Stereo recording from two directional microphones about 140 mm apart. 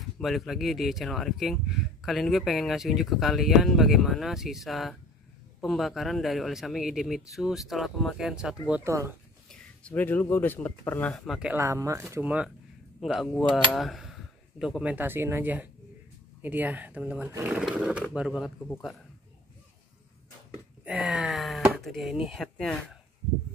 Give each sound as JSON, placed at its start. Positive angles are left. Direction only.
{"t": 0.2, "sound": "speech", "side_deg": 0}
{"t": 8.8, "sound": "speech", "side_deg": -20}
{"t": 9.5, "sound": "speech", "side_deg": 10}
{"t": 11.5, "sound": "speech", "side_deg": -20}
{"t": 13.0, "sound": "speech", "side_deg": 0}
{"t": 20.8, "sound": "speech", "side_deg": -5}